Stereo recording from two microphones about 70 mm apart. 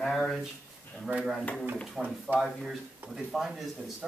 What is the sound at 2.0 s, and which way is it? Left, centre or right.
Speech, centre.